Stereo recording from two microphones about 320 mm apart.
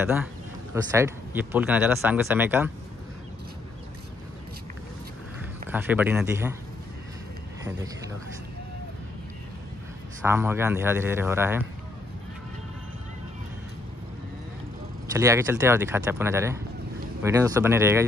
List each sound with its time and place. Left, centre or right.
0.0 s speech: centre
5.7 s speech: centre
10.2 s speech: centre
15.1 s speech: centre